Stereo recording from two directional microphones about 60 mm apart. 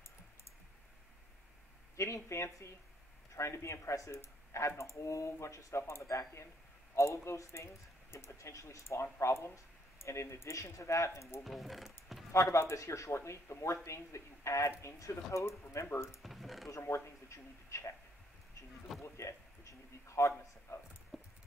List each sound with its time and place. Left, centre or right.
2.0 s speech: left
5.8 s speech: left
11.4 s speech: centre
12.3 s speech: left
16.2 s speech: centre
16.6 s speech: left
18.9 s a sound: left
21.1 s a sound: centre